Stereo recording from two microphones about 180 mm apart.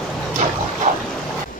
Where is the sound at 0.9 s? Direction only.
45° right (ahead or behind).